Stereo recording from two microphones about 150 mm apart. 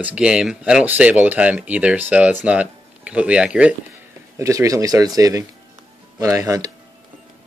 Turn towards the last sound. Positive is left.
turn(degrees=-20)  # may be behind; listen again after turning